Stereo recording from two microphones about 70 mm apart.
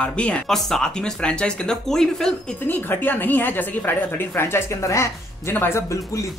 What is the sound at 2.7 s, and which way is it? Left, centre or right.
A woman's voice, left.